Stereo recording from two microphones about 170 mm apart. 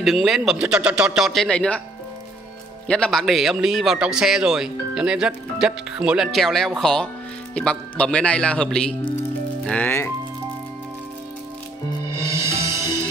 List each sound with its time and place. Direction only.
0.0 s a man's voice: centre (ahead or behind)
2.9 s a man's voice: 5° left (ahead or behind)
12.2 s music: 15° right (ahead or behind)